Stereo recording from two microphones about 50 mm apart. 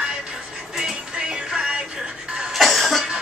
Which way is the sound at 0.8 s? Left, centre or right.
Centre.